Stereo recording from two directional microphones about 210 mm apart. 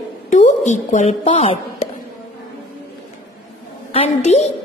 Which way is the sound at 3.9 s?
30° left (ahead or behind).